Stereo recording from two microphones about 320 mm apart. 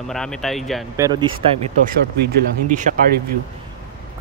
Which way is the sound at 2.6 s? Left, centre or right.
Right.